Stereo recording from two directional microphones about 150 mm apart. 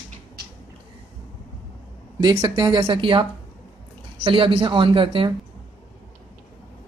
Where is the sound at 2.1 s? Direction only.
25° right (ahead or behind).